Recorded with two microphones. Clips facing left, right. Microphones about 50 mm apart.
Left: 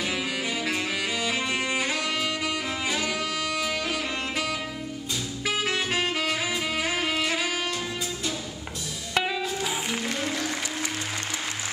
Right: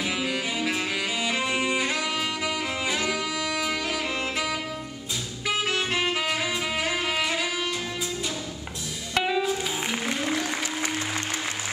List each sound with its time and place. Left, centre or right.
0.0 s music: centre
5.6 s saxophone: centre
9.1 s music: centre
9.8 s music: centre